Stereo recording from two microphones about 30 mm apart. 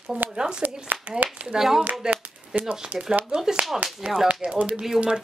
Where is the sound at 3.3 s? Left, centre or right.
Right.